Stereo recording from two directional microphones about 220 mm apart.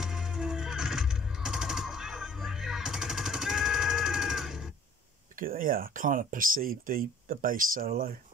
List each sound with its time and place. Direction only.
0.0 s music: 5° right (ahead or behind)
5.3 s speech: 40° right (ahead or behind)